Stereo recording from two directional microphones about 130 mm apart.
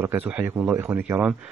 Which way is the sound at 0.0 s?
15° right (ahead or behind).